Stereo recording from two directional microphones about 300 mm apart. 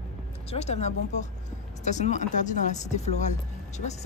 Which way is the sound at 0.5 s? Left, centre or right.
Left.